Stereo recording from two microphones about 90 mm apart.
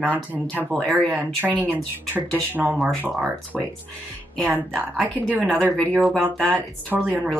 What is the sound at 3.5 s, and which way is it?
Speech, 5° right (ahead or behind).